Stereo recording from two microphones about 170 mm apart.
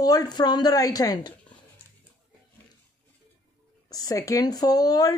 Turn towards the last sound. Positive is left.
turn(degrees=20)  # may be behind; listen again after turning